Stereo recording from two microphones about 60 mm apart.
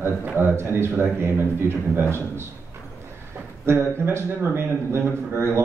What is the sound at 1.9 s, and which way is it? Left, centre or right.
Speech, right.